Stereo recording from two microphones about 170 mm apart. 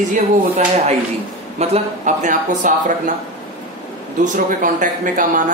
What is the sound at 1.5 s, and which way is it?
A woman's voice, 45° right (ahead or behind).